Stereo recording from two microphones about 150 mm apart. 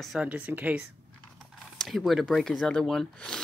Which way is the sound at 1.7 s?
Centre (ahead or behind).